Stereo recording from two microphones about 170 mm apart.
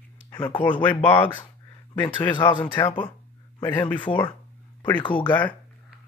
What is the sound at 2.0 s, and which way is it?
Speech, 30° left (ahead or behind).